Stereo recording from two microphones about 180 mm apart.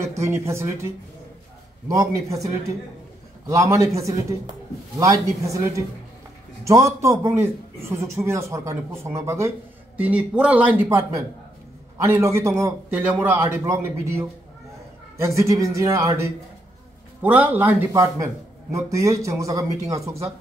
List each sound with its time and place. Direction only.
0.0 s a man's voice: 15° right (ahead or behind)